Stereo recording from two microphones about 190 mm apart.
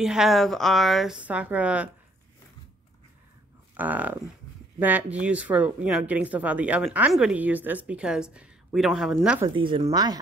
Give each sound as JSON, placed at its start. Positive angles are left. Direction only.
{"t": 0.0, "sound": "speech", "side_deg": 0}
{"t": 3.7, "sound": "speech", "side_deg": -10}
{"t": 9.5, "sound": "speech", "side_deg": -25}